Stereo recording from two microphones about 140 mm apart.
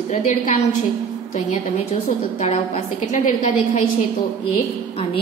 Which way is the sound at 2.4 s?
55° left (ahead or behind).